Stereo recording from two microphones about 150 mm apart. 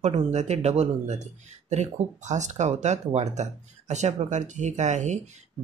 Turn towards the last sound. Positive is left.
turn(degrees=-50)  # may be behind; listen again after turning